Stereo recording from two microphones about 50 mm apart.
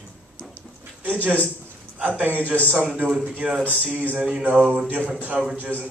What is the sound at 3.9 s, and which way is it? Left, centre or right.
Speech, right.